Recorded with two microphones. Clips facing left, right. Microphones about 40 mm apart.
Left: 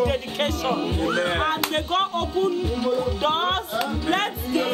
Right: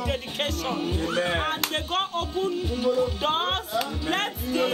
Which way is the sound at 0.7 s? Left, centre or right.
Left.